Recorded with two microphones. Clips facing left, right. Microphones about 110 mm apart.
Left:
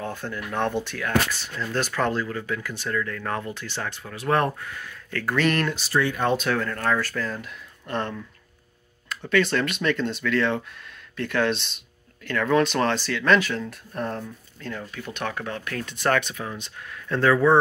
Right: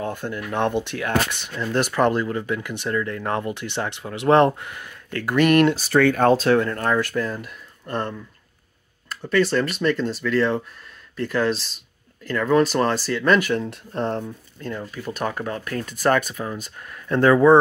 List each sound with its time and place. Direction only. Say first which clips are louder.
0.0 s speech: right 4 dB; 15° right (ahead or behind)
5.5 s speech: right 9 dB; 15° right (ahead or behind)
5.8 s speech: right 7 dB; 55° right (ahead or behind)
6.3 s speech: right 6 dB; 30° right (ahead or behind)
9.2 s speech: right 2 dB; 5° right (ahead or behind)
13.6 s speech: right 4 dB; 25° right (ahead or behind)
15.4 s speech: right 3 dB; 35° right (ahead or behind)
15.9 s speech: right 3 dB; 10° right (ahead or behind)